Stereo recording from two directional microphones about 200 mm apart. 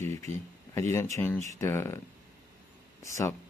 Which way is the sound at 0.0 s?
15° left (ahead or behind).